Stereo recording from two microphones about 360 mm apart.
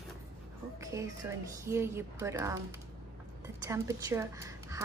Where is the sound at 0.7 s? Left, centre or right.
Centre.